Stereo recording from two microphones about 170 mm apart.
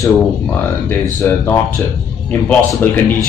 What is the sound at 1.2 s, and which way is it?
Speech, 15° left (ahead or behind).